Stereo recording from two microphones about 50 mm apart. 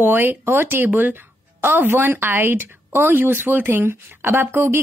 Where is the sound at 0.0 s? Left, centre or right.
Right.